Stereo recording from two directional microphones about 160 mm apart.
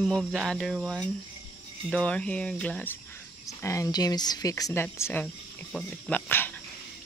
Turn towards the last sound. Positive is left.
turn(degrees=10)  # may be behind; listen again after turning